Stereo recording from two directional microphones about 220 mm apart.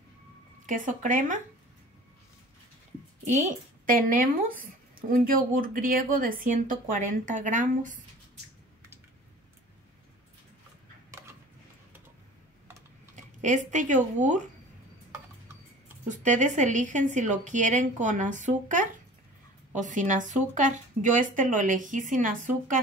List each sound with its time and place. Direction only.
0.7 s speech: 35° right (ahead or behind)
3.3 s speech: 35° right (ahead or behind)
13.1 s speech: 35° right (ahead or behind)
16.1 s speech: 35° right (ahead or behind)